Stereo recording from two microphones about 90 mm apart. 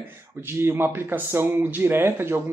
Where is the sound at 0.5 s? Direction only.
25° right (ahead or behind).